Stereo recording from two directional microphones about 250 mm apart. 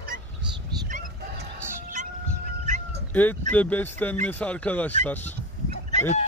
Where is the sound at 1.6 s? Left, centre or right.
Centre.